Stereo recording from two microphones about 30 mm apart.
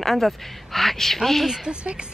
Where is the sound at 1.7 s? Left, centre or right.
Right.